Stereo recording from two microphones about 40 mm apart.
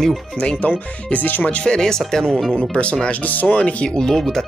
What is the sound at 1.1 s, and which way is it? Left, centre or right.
Speech, left.